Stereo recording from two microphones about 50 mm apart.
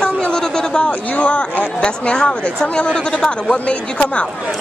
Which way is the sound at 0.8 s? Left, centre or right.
Left.